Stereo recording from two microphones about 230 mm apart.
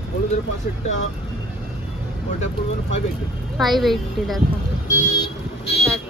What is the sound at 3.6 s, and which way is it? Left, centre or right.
Speech, centre.